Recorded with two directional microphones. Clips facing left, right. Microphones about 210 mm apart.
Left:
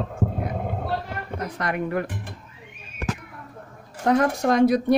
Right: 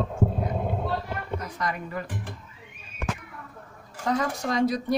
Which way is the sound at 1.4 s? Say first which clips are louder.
Left 8 dB; 65° left (ahead or behind).